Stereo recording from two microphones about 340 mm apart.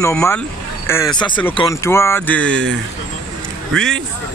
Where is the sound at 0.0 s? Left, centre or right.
Centre.